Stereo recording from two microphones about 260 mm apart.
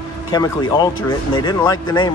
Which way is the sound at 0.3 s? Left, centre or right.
Centre.